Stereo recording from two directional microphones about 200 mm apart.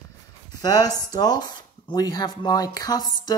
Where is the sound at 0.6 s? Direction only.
20° left (ahead or behind).